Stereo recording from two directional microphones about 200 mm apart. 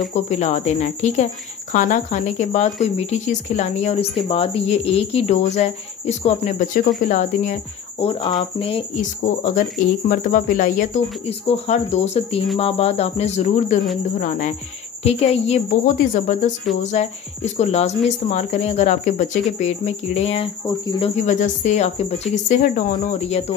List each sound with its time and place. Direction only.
0.1 s speech: 35° left (ahead or behind)
8.0 s speech: 25° left (ahead or behind)